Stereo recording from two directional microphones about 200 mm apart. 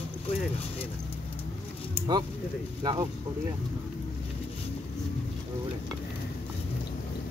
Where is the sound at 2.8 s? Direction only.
20° right (ahead or behind).